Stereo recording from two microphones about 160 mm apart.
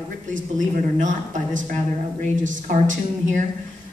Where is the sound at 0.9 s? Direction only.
50° right (ahead or behind).